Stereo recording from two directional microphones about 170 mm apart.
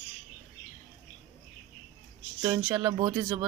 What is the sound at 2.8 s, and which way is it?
Speech, 25° right (ahead or behind).